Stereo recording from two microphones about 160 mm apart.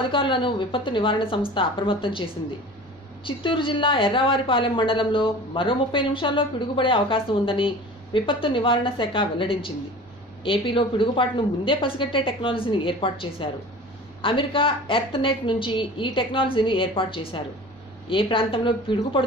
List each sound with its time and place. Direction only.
0.1 s speech: 30° left (ahead or behind)
3.3 s speech: 30° left (ahead or behind)